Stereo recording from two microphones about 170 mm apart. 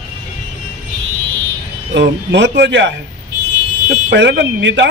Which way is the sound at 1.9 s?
90° right.